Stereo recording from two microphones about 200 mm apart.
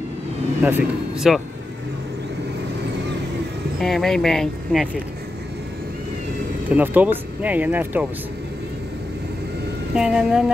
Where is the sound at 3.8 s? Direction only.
Centre (ahead or behind).